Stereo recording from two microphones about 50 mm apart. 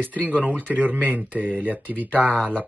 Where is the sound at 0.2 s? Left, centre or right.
Right.